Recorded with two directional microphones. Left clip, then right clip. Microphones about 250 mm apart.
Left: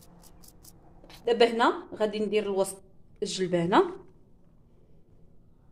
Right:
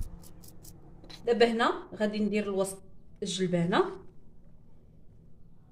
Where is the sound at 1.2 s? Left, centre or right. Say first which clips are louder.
Left 2 dB; left.